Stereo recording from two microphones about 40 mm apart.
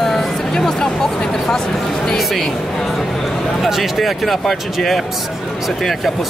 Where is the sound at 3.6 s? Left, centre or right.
Centre.